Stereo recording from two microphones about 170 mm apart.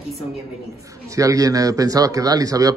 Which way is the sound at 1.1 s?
20° right (ahead or behind).